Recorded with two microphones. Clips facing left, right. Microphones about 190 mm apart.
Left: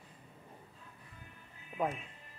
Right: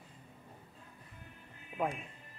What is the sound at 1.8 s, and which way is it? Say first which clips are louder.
Speech: even; centre (ahead or behind).